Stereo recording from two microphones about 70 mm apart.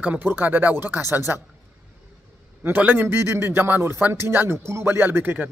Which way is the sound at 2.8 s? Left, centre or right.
Right.